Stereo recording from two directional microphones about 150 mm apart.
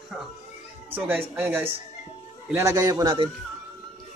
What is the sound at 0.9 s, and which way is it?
A man's voice, 15° right (ahead or behind).